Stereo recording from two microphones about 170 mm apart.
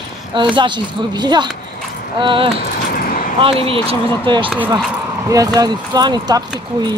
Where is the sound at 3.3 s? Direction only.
35° right (ahead or behind).